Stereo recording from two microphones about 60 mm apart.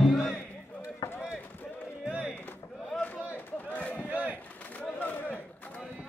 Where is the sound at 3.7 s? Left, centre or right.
Left.